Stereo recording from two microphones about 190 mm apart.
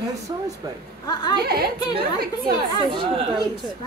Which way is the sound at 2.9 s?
25° right (ahead or behind).